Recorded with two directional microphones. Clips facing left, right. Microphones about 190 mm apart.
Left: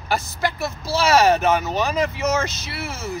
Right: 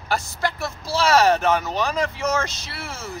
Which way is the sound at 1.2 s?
20° left (ahead or behind).